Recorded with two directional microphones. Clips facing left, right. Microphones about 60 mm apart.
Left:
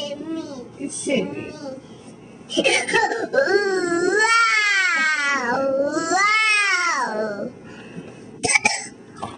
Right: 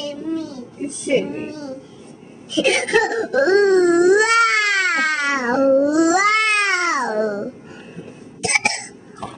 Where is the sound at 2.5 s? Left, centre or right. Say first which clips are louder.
Right 2 dB; centre.